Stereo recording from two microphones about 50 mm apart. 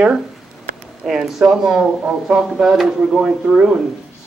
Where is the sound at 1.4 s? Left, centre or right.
Centre.